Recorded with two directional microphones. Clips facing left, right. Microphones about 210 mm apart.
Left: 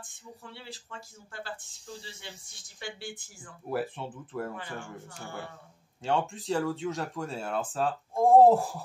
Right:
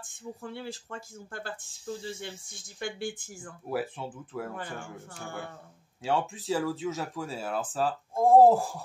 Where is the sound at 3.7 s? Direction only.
Centre (ahead or behind).